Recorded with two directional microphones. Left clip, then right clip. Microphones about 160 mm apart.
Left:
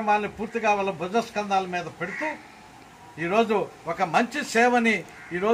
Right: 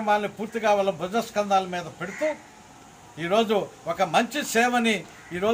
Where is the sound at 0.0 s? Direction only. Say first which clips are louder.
Even; 30° right (ahead or behind).